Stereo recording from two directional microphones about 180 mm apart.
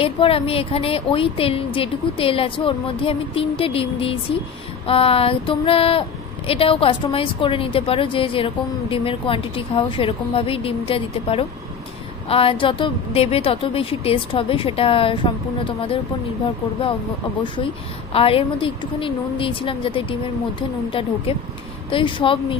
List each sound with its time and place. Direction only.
0.0 s speech: 30° left (ahead or behind)
18.1 s a woman's voice: 30° left (ahead or behind)
21.3 s a woman's voice: 30° left (ahead or behind)